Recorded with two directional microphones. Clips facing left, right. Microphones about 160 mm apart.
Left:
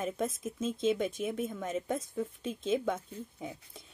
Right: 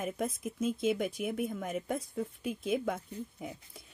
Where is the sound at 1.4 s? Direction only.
Centre (ahead or behind).